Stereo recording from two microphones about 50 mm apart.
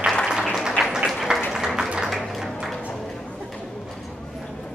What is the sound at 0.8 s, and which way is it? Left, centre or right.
Applause, centre.